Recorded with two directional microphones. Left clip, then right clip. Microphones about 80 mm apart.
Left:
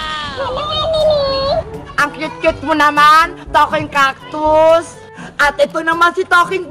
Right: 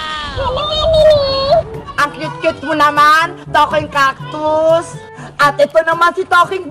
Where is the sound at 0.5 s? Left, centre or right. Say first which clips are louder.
Right 5 dB; centre.